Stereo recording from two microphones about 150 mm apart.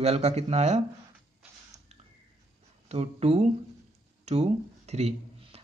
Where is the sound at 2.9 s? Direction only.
45° right (ahead or behind).